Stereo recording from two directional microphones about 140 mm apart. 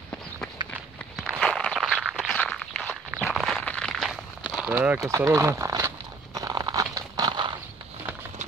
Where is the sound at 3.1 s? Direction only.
5° right (ahead or behind).